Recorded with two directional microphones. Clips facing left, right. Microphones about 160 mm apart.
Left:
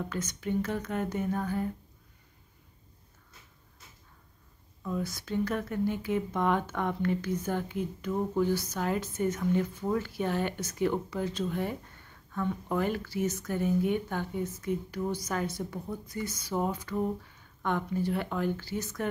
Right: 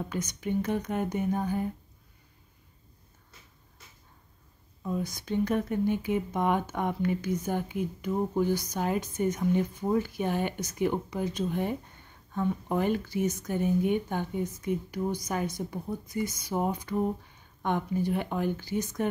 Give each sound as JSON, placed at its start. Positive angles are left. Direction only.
{"t": 0.1, "sound": "speech", "side_deg": -15}
{"t": 4.8, "sound": "speech", "side_deg": -20}